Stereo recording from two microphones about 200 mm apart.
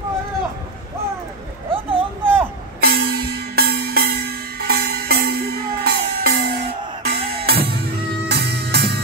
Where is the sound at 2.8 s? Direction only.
50° right (ahead or behind).